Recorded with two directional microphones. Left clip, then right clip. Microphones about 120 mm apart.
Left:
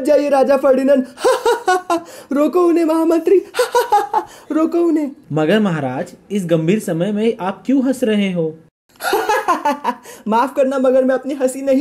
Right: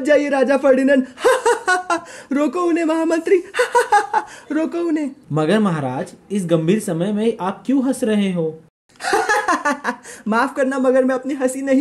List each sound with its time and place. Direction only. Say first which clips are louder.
0.0 s speech: left 2 dB; 25° left (ahead or behind); by 2.3 s 10° left (ahead or behind)
2.3 s speech: left 4 dB; 25° left (ahead or behind)
5.3 s speech: left 2 dB; centre (ahead or behind)
9.0 s speech: left 1 dB; 10° left (ahead or behind)